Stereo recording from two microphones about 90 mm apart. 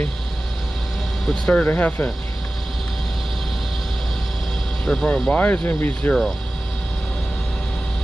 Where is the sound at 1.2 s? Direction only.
5° left (ahead or behind).